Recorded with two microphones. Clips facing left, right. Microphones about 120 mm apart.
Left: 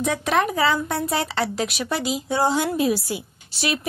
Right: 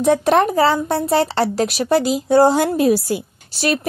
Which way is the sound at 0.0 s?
35° right (ahead or behind).